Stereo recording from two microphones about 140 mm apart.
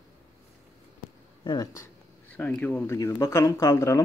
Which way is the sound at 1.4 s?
35° left (ahead or behind).